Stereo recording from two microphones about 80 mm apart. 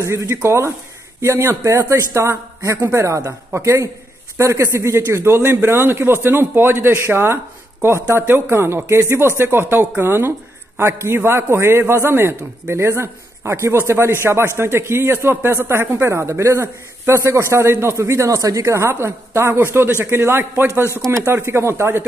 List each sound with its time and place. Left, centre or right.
0.0 s speech: right